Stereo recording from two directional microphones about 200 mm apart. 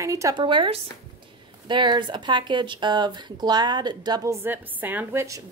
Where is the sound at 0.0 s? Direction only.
15° right (ahead or behind).